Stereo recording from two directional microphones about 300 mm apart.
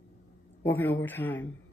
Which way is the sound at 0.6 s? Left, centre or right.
Centre.